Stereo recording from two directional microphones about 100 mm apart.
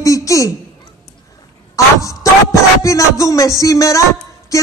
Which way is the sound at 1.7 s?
35° left (ahead or behind).